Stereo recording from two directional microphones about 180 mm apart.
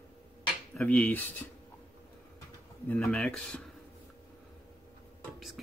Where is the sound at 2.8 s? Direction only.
10° left (ahead or behind).